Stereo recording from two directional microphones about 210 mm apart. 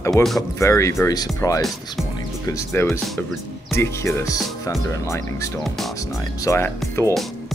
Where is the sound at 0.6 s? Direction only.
15° left (ahead or behind).